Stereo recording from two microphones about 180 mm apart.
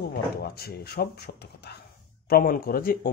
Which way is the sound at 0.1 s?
60° left (ahead or behind).